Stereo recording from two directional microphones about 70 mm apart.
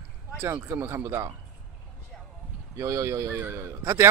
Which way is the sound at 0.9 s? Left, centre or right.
Right.